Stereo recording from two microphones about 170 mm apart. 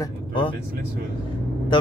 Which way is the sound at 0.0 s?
30° left (ahead or behind).